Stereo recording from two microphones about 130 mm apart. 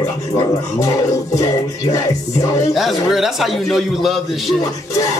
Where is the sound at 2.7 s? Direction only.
Centre (ahead or behind).